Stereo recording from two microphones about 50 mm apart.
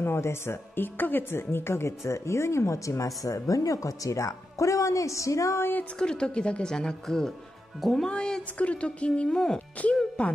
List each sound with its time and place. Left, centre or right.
0.0 s speech: left
0.7 s speech: left
5.9 s speech: centre
8.1 s a woman's voice: centre
9.8 s a woman's voice: left